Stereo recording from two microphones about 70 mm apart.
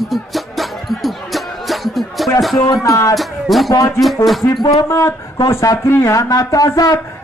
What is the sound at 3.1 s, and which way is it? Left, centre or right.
Speech, centre.